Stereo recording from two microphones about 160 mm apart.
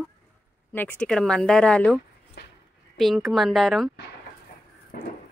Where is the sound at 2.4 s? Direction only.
90° left.